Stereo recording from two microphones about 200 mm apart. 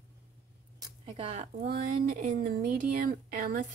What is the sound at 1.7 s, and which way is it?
Speech, 45° right (ahead or behind).